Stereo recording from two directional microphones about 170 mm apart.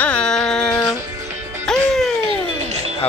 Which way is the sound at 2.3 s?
40° right (ahead or behind).